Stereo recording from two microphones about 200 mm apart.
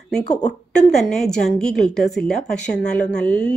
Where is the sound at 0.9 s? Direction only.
Centre (ahead or behind).